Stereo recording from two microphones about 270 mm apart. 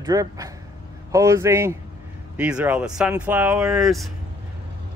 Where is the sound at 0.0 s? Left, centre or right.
Centre.